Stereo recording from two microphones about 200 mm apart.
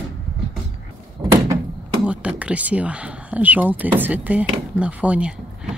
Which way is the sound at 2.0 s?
5° right (ahead or behind).